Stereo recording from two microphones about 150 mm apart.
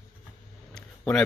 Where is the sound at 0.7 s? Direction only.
5° left (ahead or behind).